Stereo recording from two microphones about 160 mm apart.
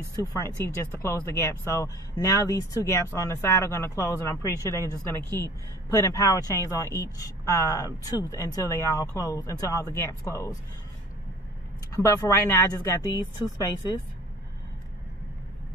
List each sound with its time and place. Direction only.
0.1 s speech: 20° left (ahead or behind)
11.9 s speech: 20° left (ahead or behind)